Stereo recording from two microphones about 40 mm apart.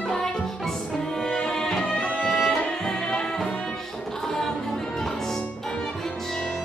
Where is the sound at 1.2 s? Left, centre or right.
Centre.